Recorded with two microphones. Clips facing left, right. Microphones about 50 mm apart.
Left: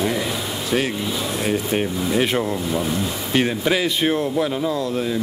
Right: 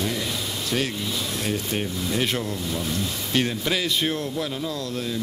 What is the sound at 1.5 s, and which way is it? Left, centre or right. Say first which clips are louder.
Speech: left 7 dB; centre.